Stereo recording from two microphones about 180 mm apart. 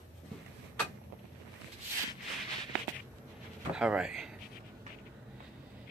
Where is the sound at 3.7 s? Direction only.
5° right (ahead or behind).